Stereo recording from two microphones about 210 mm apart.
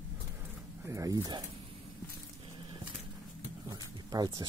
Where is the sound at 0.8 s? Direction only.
15° right (ahead or behind).